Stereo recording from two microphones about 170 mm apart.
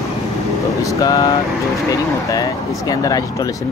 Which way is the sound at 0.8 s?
20° left (ahead or behind).